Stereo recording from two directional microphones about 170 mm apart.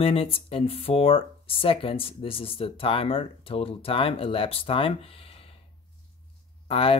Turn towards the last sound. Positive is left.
turn(degrees=35)  # may be behind; listen again after turning